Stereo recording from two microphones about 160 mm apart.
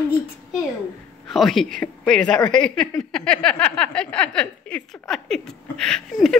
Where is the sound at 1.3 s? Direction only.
Centre (ahead or behind).